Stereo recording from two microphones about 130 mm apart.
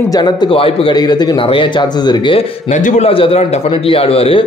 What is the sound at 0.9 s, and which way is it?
Speech, 30° left (ahead or behind).